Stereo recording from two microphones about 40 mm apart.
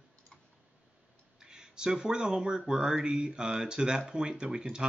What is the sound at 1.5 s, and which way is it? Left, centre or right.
Speech, centre.